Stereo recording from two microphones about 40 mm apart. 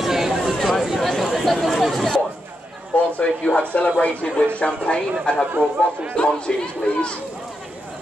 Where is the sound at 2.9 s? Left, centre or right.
Left.